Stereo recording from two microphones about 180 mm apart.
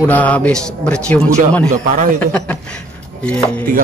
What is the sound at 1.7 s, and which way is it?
Speech, 45° right (ahead or behind).